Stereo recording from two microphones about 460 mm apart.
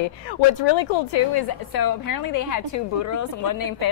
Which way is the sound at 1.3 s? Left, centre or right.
Left.